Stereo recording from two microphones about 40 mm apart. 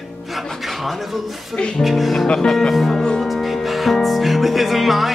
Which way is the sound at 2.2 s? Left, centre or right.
Centre.